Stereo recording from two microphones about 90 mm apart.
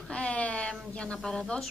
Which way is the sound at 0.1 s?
15° left (ahead or behind).